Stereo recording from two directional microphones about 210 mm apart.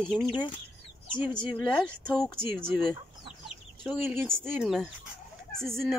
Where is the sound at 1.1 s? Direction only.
20° left (ahead or behind).